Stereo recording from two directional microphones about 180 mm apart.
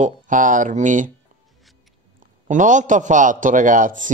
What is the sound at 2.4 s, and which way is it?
A man's voice, 45° right (ahead or behind).